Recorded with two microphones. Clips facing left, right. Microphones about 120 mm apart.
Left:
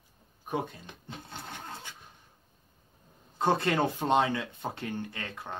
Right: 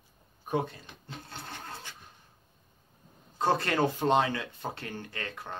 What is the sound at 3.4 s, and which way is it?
Speech, 20° left (ahead or behind).